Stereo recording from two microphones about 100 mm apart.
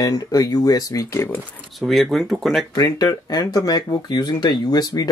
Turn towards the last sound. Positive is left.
turn(degrees=40)  # may be behind; listen again after turning